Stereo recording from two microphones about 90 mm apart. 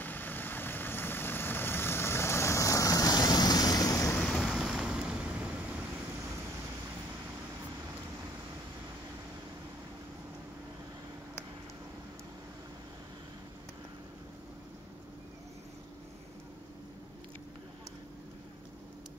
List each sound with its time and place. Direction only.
0.0 s vehicle: 20° left (ahead or behind); by 4.1 s 40° left (ahead or behind)
4.4 s vehicle: centre (ahead or behind)